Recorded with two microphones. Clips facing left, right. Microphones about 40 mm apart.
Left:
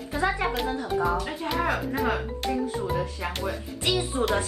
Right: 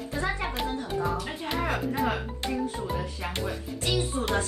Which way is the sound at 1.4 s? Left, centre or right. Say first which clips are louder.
Left 3 dB; centre.